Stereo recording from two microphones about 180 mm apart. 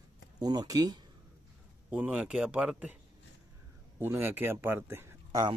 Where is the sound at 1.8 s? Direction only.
10° right (ahead or behind).